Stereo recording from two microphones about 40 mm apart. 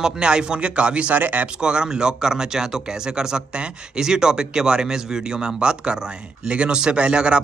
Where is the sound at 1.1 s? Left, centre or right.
Right.